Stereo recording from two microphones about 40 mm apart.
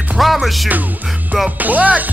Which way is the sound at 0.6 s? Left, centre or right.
Right.